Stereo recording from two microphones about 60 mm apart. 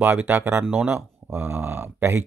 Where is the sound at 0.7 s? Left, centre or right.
Centre.